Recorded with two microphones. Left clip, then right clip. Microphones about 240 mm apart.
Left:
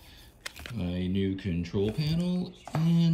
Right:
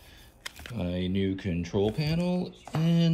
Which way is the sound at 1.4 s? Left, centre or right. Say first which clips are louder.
Right 3 dB; centre.